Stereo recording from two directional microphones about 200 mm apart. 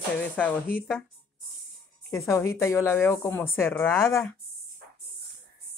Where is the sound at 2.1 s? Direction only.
15° left (ahead or behind).